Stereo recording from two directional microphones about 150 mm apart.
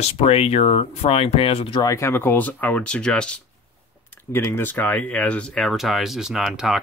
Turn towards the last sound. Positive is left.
turn(degrees=0)  # may be behind; listen again after turning